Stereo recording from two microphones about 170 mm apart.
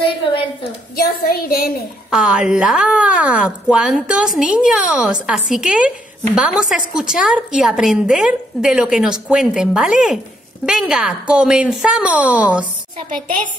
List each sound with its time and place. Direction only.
0.9 s a woman's voice: 60° left (ahead or behind)
2.0 s a woman's voice: 5° right (ahead or behind)